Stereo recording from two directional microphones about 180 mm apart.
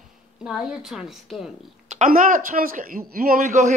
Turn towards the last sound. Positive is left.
turn(degrees=-45)  # may be behind; listen again after turning